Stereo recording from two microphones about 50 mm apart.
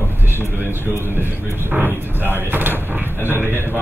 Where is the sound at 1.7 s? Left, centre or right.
Right.